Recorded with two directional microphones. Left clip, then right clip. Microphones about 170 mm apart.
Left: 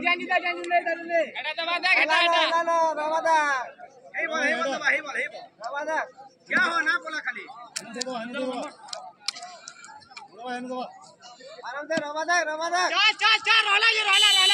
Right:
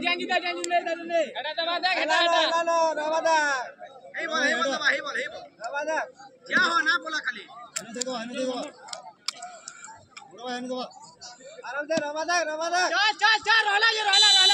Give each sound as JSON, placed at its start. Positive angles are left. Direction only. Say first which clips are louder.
{"t": 0.0, "sound": "a man's voice", "louder": "left 2 dB", "side_deg": -30}
{"t": 1.3, "sound": "speech", "louder": "even", "side_deg": -50}
{"t": 2.5, "sound": "speech", "louder": "left 1 dB", "side_deg": -15}
{"t": 4.1, "sound": "a man's voice", "louder": "even", "side_deg": -35}
{"t": 5.6, "sound": "speech", "louder": "even", "side_deg": -10}
{"t": 6.5, "sound": "a man's voice", "louder": "right 1 dB", "side_deg": -30}
{"t": 8.9, "sound": "a sound", "louder": "left 2 dB", "side_deg": -10}
{"t": 10.4, "sound": "a man's voice", "louder": "even", "side_deg": -35}
{"t": 11.6, "sound": "speech", "louder": "right 1 dB", "side_deg": -10}
{"t": 12.9, "sound": "speech", "louder": "left 2 dB", "side_deg": -45}